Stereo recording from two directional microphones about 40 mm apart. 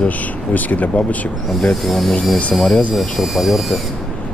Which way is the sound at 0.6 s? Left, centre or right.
Left.